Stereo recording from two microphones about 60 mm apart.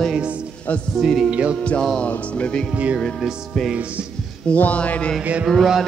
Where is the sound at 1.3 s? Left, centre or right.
Centre.